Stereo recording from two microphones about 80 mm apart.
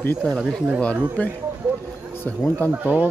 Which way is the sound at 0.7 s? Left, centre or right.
Centre.